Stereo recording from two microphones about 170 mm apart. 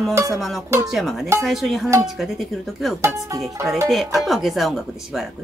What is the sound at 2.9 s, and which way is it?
Music, 20° right (ahead or behind).